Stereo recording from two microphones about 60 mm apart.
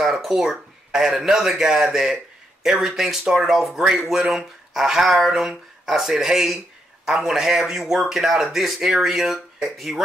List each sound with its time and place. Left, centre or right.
0.0 s speech: centre